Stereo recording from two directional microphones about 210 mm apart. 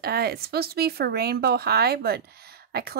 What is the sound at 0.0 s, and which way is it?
Speech, 50° right (ahead or behind).